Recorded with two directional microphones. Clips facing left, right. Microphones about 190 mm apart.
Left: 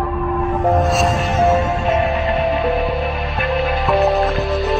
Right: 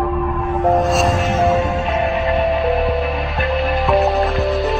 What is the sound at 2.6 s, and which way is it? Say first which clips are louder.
Music: right 1 dB; centre (ahead or behind).